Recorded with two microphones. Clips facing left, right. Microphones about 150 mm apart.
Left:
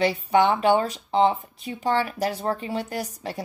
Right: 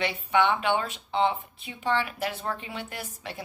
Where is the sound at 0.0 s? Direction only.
40° left (ahead or behind).